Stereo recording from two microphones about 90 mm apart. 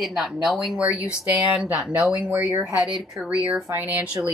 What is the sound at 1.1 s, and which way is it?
Speech, 15° right (ahead or behind).